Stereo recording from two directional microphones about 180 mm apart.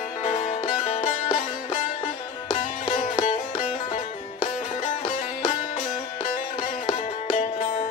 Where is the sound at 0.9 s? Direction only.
40° left (ahead or behind).